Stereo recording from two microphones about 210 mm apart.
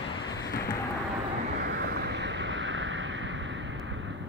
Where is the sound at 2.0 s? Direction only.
55° right (ahead or behind).